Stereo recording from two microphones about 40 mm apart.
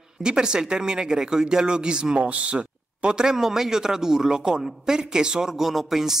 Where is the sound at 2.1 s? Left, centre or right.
Right.